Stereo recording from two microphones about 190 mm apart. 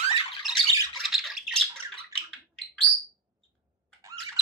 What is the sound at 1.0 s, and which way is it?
Squawk, centre (ahead or behind).